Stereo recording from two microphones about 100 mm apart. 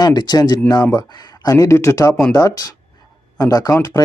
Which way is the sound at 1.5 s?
30° left (ahead or behind).